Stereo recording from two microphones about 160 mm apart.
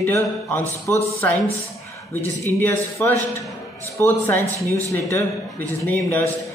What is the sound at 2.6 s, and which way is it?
A man's voice, 15° left (ahead or behind).